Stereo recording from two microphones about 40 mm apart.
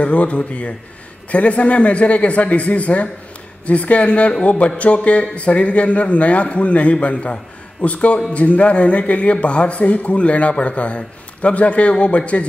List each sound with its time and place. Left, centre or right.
0.0 s speech: left